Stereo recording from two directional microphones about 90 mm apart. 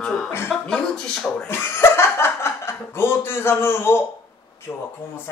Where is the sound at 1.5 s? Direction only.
25° left (ahead or behind).